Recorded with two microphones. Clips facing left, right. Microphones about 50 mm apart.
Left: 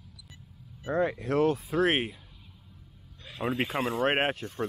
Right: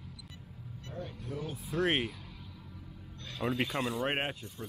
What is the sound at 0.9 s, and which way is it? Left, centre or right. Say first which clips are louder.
Speech: left 15 dB; left.